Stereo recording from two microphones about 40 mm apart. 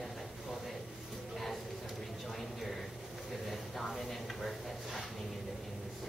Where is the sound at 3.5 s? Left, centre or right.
Centre.